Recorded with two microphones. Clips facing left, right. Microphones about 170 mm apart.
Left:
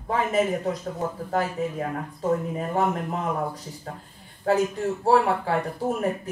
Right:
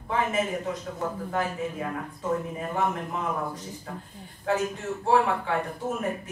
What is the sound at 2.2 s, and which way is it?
Speech, 35° left (ahead or behind).